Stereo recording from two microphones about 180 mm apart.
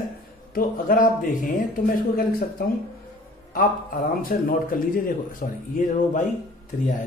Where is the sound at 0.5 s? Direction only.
50° left (ahead or behind).